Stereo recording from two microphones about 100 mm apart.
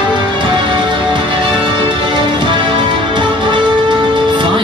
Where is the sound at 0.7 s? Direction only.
50° right (ahead or behind).